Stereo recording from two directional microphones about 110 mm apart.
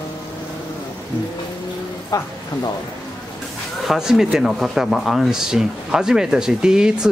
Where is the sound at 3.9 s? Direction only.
5° right (ahead or behind).